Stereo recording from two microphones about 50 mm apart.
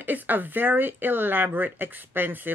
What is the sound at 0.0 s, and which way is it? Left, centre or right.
A woman's voice, right.